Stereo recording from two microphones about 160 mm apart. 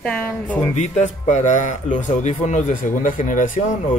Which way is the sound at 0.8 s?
50° left (ahead or behind).